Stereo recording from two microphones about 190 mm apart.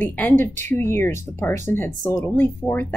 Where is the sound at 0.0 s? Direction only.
10° left (ahead or behind).